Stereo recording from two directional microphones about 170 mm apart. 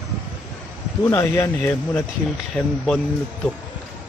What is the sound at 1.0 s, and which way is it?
Speech, 15° left (ahead or behind).